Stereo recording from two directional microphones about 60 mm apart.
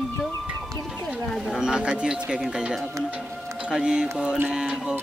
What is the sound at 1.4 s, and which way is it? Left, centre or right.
Speech, centre.